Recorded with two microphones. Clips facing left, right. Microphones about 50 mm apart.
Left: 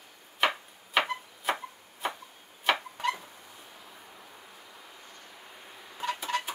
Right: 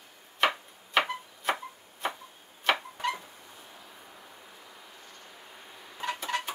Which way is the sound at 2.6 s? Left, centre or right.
Centre.